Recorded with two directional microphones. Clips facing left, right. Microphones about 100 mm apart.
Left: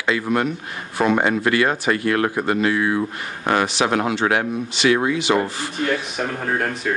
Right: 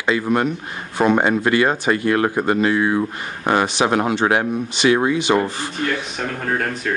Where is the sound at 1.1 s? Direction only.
15° right (ahead or behind).